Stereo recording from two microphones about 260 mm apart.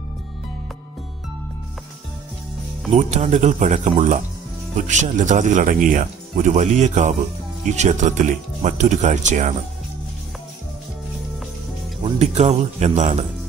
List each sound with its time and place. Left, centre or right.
2.9 s speech: right
12.0 s speech: right